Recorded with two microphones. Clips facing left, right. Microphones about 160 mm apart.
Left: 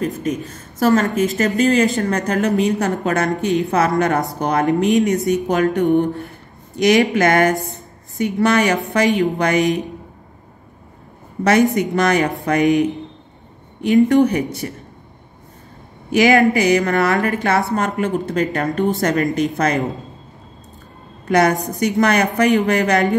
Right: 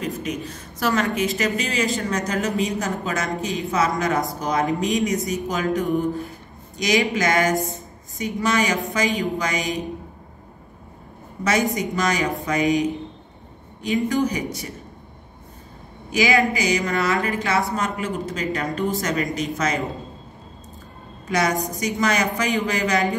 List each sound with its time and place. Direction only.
0.0 s a woman's voice: 45° left (ahead or behind)
11.4 s a woman's voice: 60° left (ahead or behind)
14.0 s a woman's voice: 60° left (ahead or behind)
16.1 s a woman's voice: 55° left (ahead or behind)
21.3 s a woman's voice: 55° left (ahead or behind)